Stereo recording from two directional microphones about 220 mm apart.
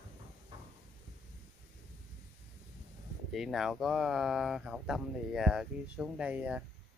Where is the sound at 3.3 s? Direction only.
Centre (ahead or behind).